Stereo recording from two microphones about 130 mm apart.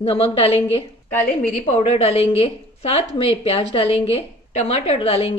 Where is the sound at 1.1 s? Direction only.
15° left (ahead or behind).